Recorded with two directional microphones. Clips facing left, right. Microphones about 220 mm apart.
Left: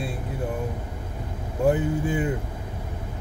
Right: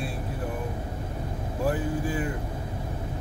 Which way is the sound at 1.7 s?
25° left (ahead or behind).